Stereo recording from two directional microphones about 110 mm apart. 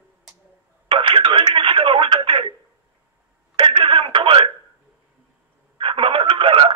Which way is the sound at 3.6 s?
50° right (ahead or behind).